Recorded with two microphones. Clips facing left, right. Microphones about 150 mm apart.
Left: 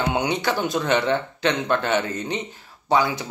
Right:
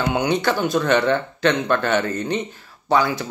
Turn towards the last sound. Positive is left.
turn(degrees=20)  # may be behind; listen again after turning